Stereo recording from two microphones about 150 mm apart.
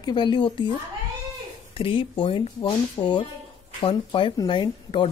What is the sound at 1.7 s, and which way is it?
Speech, 35° left (ahead or behind).